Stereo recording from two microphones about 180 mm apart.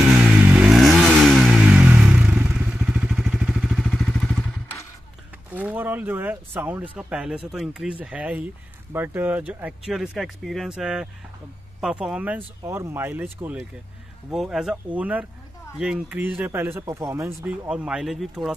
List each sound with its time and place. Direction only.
0.1 s vehicle: 10° right (ahead or behind)
5.5 s speech: 10° right (ahead or behind)
17.4 s speech: 5° right (ahead or behind)